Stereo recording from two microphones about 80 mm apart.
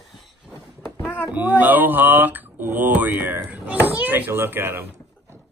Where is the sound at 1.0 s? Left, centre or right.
Left.